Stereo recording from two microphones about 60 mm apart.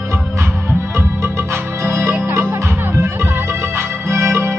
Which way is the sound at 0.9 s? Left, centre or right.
Right.